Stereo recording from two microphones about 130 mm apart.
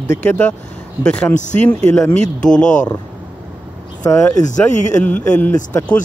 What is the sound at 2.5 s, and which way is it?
Speech, 75° left (ahead or behind).